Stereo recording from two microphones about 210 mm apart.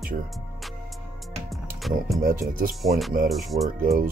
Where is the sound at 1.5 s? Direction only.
Centre (ahead or behind).